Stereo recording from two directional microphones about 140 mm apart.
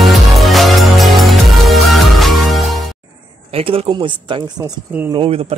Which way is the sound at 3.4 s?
45° right (ahead or behind).